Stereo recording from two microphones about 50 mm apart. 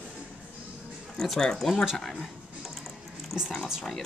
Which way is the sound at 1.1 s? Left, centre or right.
Centre.